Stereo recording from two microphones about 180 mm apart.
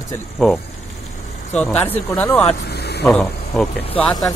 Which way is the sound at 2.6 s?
65° left (ahead or behind).